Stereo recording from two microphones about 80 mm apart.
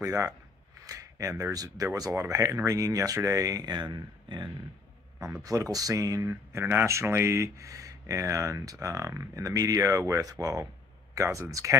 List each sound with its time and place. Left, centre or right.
0.0 s speech: right
5.4 s speech: right